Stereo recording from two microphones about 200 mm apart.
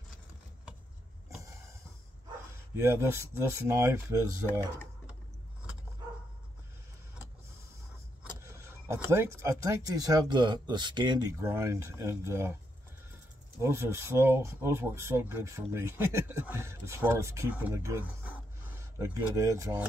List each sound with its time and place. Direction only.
2.7 s speech: 10° right (ahead or behind)
4.5 s speech: 10° left (ahead or behind)
8.2 s speech: 15° right (ahead or behind)
13.6 s speech: 15° right (ahead or behind)